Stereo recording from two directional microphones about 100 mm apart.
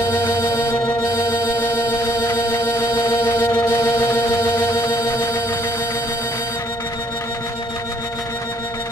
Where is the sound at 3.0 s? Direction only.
20° left (ahead or behind).